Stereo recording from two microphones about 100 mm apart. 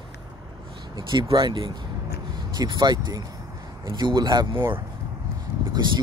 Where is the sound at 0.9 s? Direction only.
50° right (ahead or behind).